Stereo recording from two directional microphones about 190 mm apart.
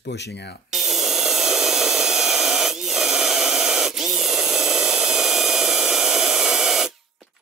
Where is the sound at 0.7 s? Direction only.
Centre (ahead or behind).